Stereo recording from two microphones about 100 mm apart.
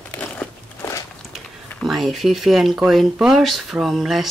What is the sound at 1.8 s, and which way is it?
Speech, centre (ahead or behind).